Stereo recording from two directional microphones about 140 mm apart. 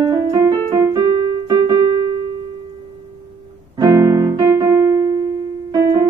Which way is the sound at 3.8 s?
25° right (ahead or behind).